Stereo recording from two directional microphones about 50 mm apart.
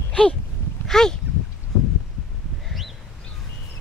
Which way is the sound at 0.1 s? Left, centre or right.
Left.